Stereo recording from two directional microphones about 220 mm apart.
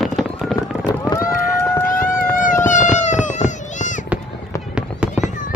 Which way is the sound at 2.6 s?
35° left (ahead or behind).